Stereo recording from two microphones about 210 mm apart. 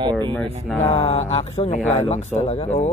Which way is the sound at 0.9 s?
30° left (ahead or behind).